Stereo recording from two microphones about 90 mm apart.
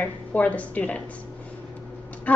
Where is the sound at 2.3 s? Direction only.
15° left (ahead or behind).